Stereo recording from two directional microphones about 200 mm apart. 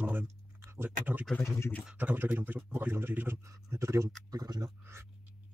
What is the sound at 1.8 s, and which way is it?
Speech, 10° right (ahead or behind).